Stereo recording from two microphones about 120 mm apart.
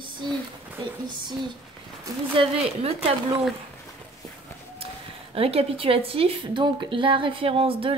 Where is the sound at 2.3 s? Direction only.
50° right (ahead or behind).